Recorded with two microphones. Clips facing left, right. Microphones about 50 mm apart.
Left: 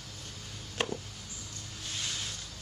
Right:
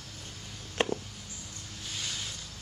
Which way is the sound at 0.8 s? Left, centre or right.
Right.